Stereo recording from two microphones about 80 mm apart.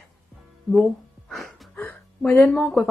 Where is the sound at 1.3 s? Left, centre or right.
Centre.